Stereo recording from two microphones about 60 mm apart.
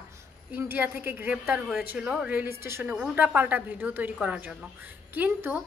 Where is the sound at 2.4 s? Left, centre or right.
Right.